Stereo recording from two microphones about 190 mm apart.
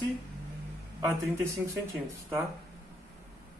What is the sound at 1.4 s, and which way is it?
Speech, 15° right (ahead or behind).